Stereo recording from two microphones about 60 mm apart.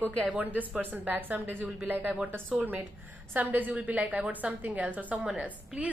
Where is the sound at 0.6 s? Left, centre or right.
Right.